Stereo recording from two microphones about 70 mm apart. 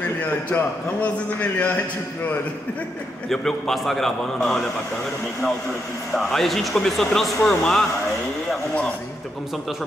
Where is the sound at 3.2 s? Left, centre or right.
Centre.